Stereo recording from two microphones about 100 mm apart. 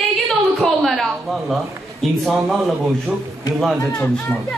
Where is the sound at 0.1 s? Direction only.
Centre (ahead or behind).